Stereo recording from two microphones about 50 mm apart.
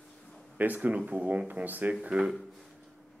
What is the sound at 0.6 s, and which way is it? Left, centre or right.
A man's voice, right.